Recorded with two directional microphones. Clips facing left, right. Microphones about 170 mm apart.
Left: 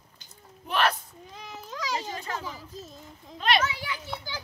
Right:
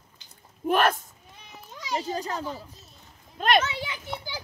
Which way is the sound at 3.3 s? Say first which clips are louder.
Right 3 dB; 50° right (ahead or behind).